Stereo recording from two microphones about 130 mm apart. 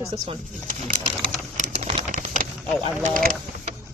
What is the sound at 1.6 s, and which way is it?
Typing, 60° right (ahead or behind).